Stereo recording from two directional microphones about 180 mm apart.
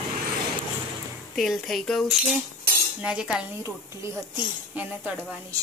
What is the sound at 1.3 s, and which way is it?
Speech, centre (ahead or behind).